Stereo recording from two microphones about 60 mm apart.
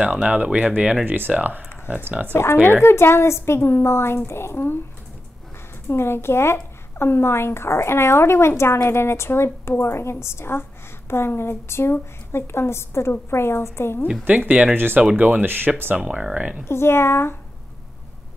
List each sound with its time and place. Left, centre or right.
0.0 s speech: right
2.3 s speech: left
5.9 s speech: left
14.5 s speech: right
16.0 s speech: centre
16.3 s speech: right
16.6 s speech: left